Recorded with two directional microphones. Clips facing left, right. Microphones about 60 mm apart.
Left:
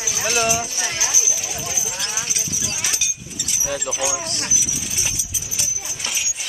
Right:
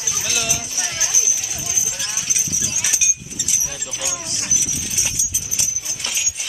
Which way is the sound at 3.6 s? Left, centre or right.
Left.